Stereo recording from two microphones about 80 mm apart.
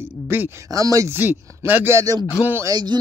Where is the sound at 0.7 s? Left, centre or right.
Right.